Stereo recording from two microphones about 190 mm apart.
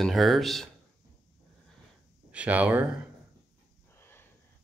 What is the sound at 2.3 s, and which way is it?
Speech, 5° right (ahead or behind).